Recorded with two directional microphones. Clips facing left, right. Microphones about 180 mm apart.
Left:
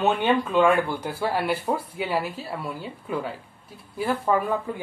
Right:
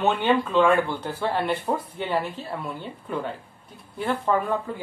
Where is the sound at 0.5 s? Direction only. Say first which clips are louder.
Left 1 dB; 10° left (ahead or behind).